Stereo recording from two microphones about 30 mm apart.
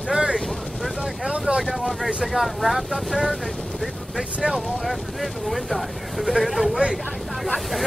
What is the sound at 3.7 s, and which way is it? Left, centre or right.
Vehicle, centre.